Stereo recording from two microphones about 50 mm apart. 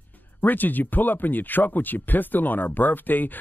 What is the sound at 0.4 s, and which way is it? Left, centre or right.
Speech, left.